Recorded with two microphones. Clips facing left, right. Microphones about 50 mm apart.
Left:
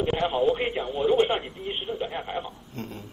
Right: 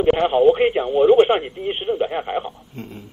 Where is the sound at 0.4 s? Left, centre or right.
Right.